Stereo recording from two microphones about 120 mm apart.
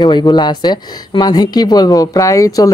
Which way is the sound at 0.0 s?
35° left (ahead or behind).